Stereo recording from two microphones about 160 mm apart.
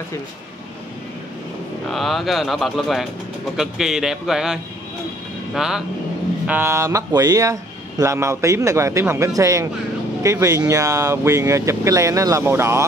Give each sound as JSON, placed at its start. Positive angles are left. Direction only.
{"t": 1.9, "sound": "speech", "side_deg": 0}